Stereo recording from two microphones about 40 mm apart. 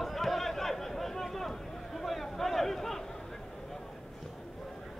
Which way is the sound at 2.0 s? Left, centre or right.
Centre.